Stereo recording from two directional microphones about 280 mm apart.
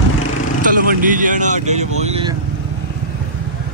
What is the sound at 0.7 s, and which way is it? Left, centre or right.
Speech, right.